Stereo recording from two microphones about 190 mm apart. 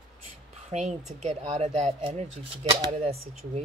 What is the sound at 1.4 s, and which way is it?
Speech, 35° right (ahead or behind).